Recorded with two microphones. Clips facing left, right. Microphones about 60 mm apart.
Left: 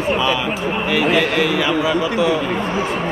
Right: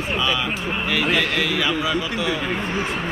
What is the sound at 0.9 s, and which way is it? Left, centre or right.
A man's voice, left.